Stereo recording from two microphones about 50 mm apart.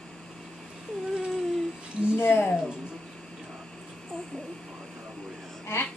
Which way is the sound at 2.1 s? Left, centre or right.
Left.